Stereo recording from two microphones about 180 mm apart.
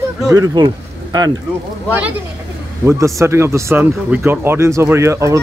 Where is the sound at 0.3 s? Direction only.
20° right (ahead or behind).